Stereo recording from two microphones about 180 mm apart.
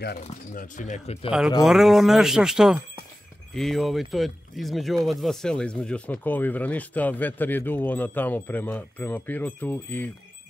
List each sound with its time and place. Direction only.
0.0 s speech: 60° left (ahead or behind)
0.7 s speech: 45° left (ahead or behind)
1.6 s speech: centre (ahead or behind)